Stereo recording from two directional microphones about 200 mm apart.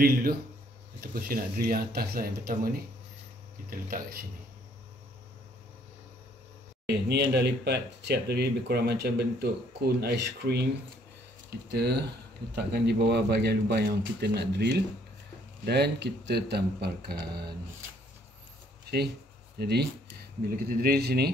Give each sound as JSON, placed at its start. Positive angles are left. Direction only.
{"t": 0.0, "sound": "speech", "side_deg": -45}
{"t": 6.9, "sound": "speech", "side_deg": -55}
{"t": 11.7, "sound": "speech", "side_deg": -55}
{"t": 19.6, "sound": "speech", "side_deg": -55}